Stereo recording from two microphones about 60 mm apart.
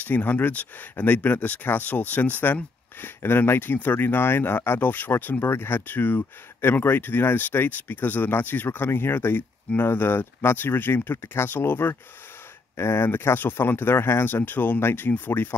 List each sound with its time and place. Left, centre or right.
0.0 s speech: left